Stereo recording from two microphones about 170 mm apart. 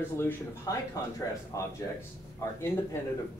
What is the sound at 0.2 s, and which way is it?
Speech, 20° left (ahead or behind).